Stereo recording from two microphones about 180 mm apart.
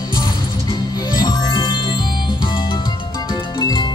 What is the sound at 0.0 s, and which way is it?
Music, 25° left (ahead or behind).